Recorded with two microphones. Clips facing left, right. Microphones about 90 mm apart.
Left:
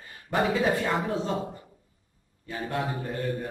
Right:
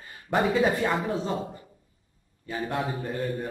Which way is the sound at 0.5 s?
Centre (ahead or behind).